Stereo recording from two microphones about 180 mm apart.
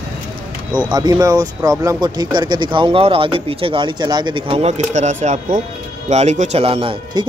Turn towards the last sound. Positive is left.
turn(degrees=-25)  # may be behind; listen again after turning